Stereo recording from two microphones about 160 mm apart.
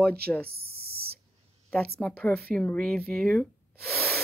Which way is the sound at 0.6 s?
75° right (ahead or behind).